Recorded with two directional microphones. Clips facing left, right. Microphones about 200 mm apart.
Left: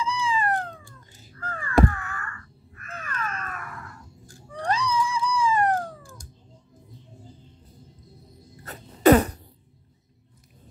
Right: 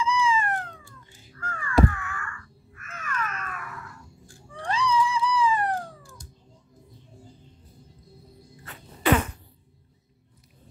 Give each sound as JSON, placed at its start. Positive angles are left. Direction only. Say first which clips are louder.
{"t": 0.0, "sound": "cat", "louder": "right 2 dB", "side_deg": 35}
{"t": 8.6, "sound": "sneeze", "louder": "left 7 dB", "side_deg": 40}